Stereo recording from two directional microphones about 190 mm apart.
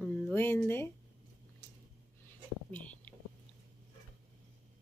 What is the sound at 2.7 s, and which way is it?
Whispering, 5° left (ahead or behind).